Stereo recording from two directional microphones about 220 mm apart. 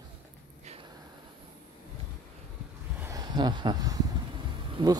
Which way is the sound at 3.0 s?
15° right (ahead or behind).